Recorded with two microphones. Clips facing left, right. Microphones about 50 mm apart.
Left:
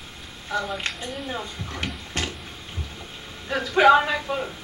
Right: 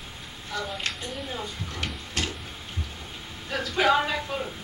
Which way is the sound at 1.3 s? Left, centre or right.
Left.